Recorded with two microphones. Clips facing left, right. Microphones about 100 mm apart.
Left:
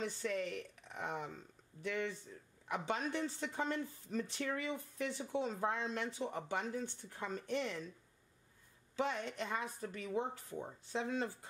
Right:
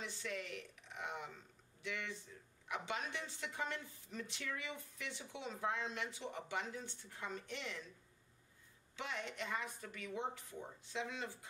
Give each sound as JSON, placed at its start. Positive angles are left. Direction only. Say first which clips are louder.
{"t": 0.0, "sound": "a woman's voice", "louder": "left 7 dB", "side_deg": 40}
{"t": 8.9, "sound": "a woman's voice", "louder": "left 7 dB", "side_deg": 35}